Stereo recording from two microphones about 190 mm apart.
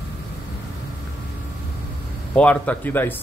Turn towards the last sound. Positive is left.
turn(degrees=10)  # may be behind; listen again after turning